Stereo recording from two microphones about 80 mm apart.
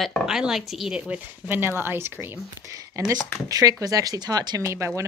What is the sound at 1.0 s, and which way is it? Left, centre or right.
Speech, right.